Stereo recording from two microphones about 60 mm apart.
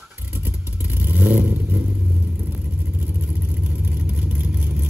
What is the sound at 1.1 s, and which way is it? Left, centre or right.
Vehicle, right.